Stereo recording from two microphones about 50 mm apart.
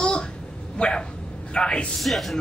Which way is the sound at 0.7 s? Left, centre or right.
Left.